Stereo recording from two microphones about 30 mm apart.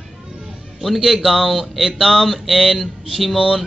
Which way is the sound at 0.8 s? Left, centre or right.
Centre.